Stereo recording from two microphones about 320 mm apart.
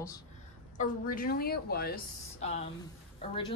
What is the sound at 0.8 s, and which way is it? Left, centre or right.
A woman's voice, left.